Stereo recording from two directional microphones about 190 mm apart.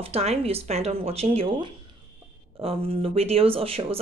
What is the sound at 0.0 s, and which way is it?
Speech, 35° right (ahead or behind).